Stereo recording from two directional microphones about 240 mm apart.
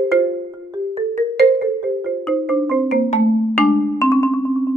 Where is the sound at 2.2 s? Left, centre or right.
Centre.